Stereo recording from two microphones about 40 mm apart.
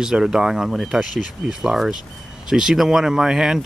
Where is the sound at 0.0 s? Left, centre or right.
Centre.